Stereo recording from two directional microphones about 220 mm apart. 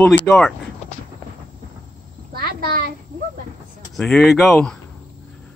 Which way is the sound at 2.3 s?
45° right (ahead or behind).